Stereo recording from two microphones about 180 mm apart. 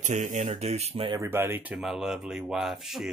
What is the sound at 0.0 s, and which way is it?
Speech, 45° right (ahead or behind).